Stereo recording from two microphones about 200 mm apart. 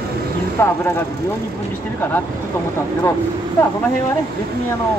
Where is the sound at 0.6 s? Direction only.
15° left (ahead or behind).